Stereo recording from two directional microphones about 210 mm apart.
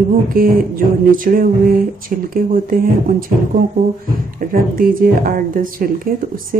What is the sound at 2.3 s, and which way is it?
A woman's voice, 40° right (ahead or behind).